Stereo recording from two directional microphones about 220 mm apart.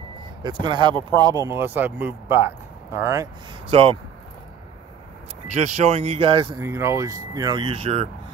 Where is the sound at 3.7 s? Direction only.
25° right (ahead or behind).